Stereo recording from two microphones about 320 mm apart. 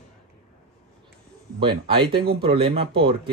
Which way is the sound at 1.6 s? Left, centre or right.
Centre.